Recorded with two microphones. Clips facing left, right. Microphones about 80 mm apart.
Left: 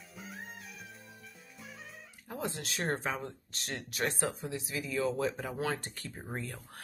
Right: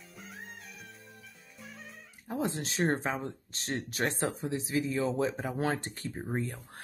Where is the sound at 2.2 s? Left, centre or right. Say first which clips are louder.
Right 5 dB; right.